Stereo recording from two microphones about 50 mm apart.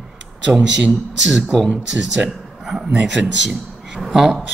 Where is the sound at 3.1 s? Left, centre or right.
Right.